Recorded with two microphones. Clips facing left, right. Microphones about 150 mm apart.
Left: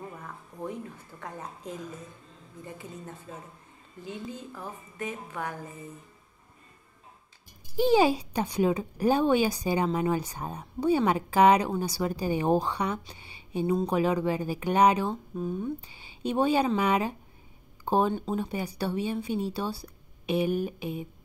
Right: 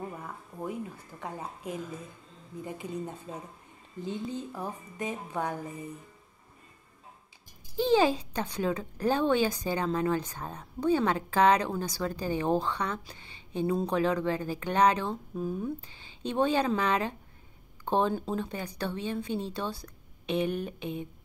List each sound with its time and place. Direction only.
0.2 s a sound: 10° right (ahead or behind)
1.2 s a woman's voice: 10° right (ahead or behind)
7.7 s speech: 10° left (ahead or behind)
13.1 s a sound: 10° left (ahead or behind)
13.8 s speech: 10° left (ahead or behind)
15.3 s speech: 5° right (ahead or behind)
15.8 s speech: 10° left (ahead or behind)